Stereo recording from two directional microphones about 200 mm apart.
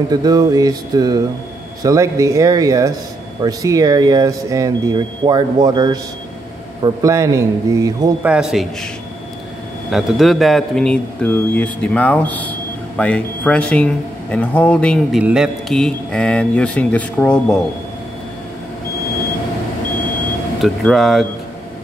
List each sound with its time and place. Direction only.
0.1 s a sound: 20° right (ahead or behind)
1.8 s speech: 15° right (ahead or behind)
8.2 s speech: 5° right (ahead or behind)
9.8 s speech: centre (ahead or behind)
20.6 s speech: centre (ahead or behind)